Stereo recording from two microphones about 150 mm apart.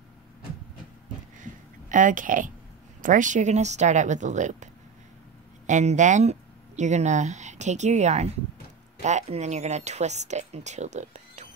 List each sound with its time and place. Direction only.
1.4 s a sound: 60° right (ahead or behind)
3.0 s speech: 60° right (ahead or behind)
5.7 s speech: 55° right (ahead or behind)